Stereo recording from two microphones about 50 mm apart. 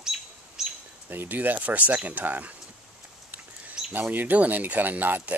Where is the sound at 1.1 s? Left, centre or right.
Right.